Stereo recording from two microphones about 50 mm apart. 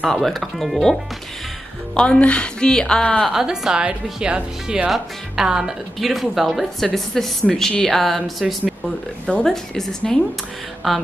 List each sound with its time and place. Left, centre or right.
0.0 s a woman's voice: centre
2.0 s a woman's voice: left
3.3 s speech: centre
4.8 s speech: centre
5.9 s a woman's voice: centre